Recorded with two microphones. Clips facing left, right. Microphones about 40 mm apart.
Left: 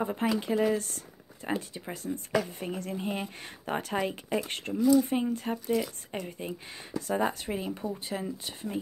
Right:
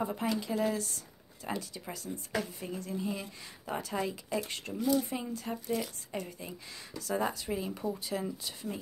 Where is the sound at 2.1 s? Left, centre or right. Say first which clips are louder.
Left 6 dB; left.